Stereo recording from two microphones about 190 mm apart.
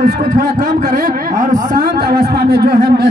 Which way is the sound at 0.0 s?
45° right (ahead or behind).